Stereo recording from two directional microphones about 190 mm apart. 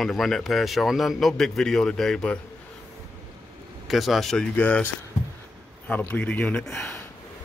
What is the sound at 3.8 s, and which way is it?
Speech, centre (ahead or behind).